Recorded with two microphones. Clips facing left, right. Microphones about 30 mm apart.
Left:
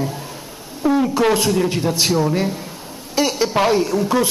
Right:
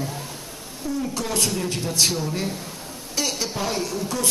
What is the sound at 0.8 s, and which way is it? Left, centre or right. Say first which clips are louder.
Speech: left 11 dB; left.